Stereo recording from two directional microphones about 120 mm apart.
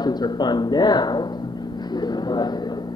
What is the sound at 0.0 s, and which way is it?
A man's voice, 35° left (ahead or behind).